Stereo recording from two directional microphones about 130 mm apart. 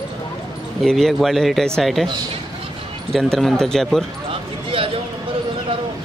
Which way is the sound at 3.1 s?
Centre (ahead or behind).